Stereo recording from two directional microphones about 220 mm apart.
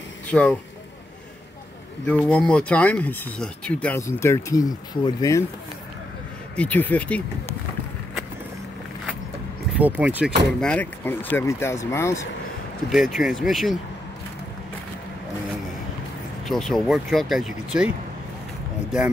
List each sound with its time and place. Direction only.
0.3 s speech: 5° left (ahead or behind)
2.0 s speech: 5° left (ahead or behind)
6.5 s speech: 5° left (ahead or behind)
9.8 s speech: 5° right (ahead or behind)
10.6 s speech: 5° left (ahead or behind)
12.9 s speech: centre (ahead or behind)
16.4 s speech: centre (ahead or behind)